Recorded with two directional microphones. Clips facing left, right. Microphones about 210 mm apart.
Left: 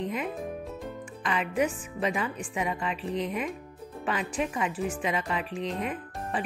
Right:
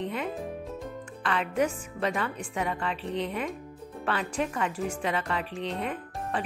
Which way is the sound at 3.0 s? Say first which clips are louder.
Even; 35° right (ahead or behind).